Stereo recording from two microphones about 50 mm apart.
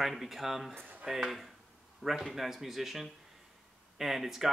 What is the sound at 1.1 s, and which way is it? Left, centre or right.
Speech, centre.